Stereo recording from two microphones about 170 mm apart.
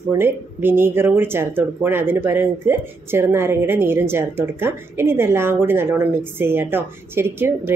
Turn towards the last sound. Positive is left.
turn(degrees=-15)  # may be behind; listen again after turning